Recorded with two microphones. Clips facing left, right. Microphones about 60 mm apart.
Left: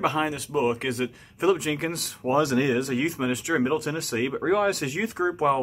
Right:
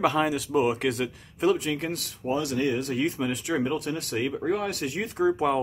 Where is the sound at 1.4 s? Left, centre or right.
Centre.